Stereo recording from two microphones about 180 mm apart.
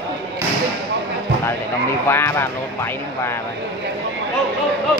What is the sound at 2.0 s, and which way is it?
A man's voice, 15° left (ahead or behind).